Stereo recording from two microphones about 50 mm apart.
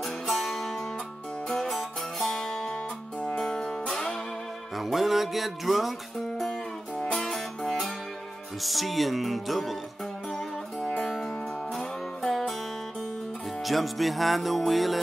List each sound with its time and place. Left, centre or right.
0.0 s music: centre
4.7 s music: centre
8.6 s speech: centre
11.0 s music: centre
13.7 s speech: centre